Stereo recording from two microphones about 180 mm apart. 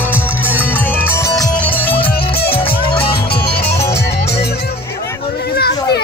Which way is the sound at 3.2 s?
60° left (ahead or behind).